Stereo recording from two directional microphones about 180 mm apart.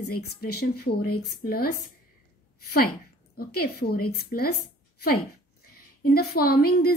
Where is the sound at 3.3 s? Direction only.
55° left (ahead or behind).